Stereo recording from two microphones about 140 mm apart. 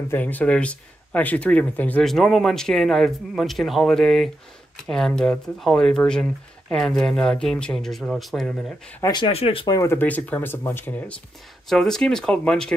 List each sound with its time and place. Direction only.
0.1 s speech: 10° left (ahead or behind)
9.1 s speech: 40° left (ahead or behind)
9.7 s speech: 20° left (ahead or behind)